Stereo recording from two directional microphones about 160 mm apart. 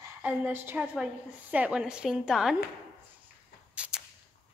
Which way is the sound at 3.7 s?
5° right (ahead or behind).